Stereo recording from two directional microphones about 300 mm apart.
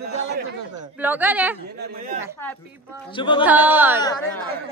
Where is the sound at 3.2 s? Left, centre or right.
Centre.